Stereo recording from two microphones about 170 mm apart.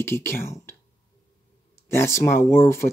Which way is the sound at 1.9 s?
15° left (ahead or behind).